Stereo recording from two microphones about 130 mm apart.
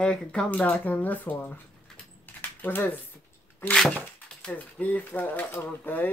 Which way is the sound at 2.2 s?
15° left (ahead or behind).